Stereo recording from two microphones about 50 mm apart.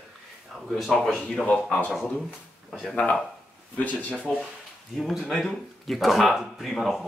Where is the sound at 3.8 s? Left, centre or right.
Left.